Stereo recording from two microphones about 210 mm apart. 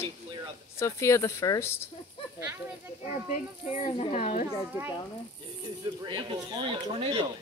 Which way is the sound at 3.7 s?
30° left (ahead or behind).